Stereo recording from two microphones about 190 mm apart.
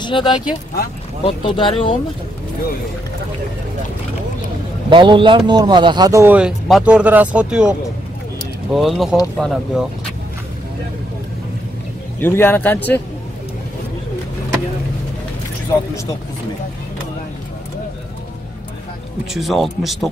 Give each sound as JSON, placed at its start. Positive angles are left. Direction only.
{"t": 0.0, "sound": "speech", "side_deg": 25}
{"t": 4.8, "sound": "a man's voice", "side_deg": -25}
{"t": 8.7, "sound": "speech", "side_deg": 0}
{"t": 12.2, "sound": "speech", "side_deg": 10}
{"t": 19.3, "sound": "speech", "side_deg": 0}